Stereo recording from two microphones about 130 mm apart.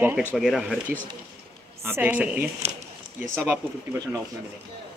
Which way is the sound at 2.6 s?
50° right (ahead or behind).